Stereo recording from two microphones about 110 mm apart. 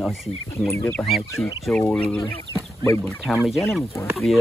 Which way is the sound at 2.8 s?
25° left (ahead or behind).